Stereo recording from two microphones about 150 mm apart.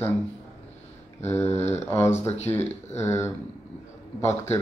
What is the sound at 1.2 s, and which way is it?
Speech, 15° left (ahead or behind).